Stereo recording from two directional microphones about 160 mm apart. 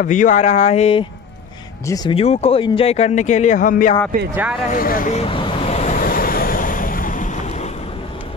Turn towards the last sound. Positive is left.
turn(degrees=45)  # may be behind; listen again after turning